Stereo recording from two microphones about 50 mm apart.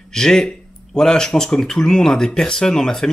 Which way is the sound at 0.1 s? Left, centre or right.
Centre.